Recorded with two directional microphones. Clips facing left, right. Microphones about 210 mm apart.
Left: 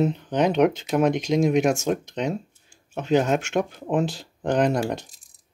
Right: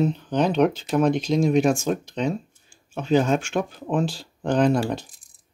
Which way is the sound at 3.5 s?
30° left (ahead or behind).